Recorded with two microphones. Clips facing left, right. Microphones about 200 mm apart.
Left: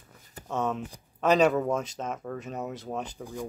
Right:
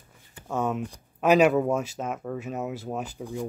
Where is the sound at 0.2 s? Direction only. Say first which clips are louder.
Left 3 dB; 40° left (ahead or behind).